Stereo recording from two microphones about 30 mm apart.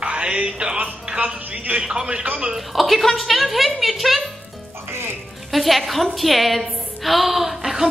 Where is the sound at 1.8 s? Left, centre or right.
Right.